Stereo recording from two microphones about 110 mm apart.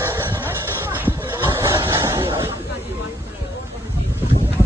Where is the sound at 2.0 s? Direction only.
25° right (ahead or behind).